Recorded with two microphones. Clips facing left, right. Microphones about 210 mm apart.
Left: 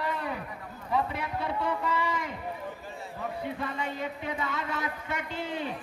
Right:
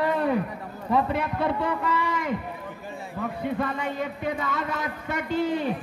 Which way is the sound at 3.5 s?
55° right (ahead or behind).